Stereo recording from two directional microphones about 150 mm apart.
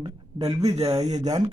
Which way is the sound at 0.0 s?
30° right (ahead or behind).